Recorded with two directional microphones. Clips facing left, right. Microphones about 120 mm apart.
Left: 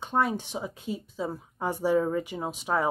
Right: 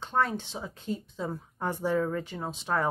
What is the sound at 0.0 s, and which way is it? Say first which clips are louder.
A woman's voice: left 2 dB; 10° left (ahead or behind).